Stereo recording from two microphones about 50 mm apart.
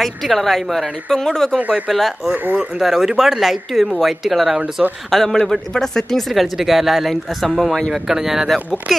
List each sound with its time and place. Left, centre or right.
0.0 s speech: centre
5.1 s a man's voice: centre